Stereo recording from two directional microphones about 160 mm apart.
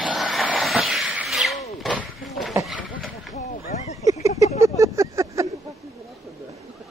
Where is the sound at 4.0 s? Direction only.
20° right (ahead or behind).